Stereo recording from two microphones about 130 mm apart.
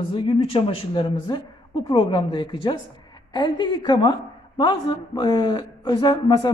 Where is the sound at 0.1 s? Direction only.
45° left (ahead or behind).